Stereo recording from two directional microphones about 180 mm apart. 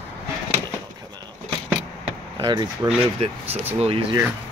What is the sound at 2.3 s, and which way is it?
Speech, 25° right (ahead or behind).